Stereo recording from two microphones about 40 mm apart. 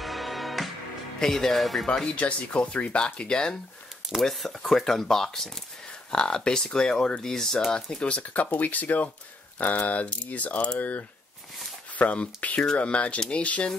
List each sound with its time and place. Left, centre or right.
0.0 s music: centre
1.2 s speech: centre
2.1 s speech: left
4.2 s speech: centre; by 8.3 s left
8.3 s speech: left